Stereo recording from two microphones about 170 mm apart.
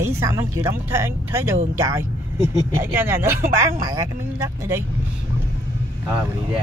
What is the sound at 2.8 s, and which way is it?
Speech, 10° right (ahead or behind).